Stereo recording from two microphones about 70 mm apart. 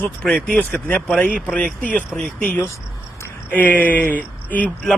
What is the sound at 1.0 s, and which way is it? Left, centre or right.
A man's voice, centre.